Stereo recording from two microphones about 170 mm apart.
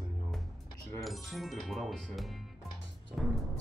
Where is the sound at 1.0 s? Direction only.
Centre (ahead or behind).